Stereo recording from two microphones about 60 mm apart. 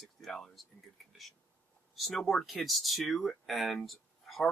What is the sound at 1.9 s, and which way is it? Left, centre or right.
Speech, centre.